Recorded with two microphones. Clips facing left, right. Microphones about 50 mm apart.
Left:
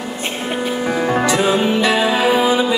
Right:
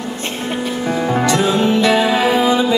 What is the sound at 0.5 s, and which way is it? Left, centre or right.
Music, centre.